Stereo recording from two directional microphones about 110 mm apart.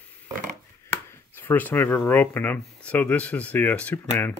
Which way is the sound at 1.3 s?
15° left (ahead or behind).